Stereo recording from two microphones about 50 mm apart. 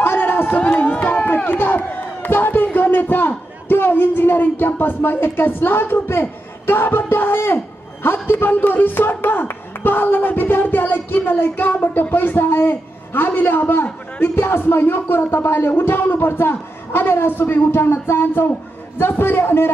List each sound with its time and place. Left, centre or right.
0.0 s run: left
0.6 s speech: left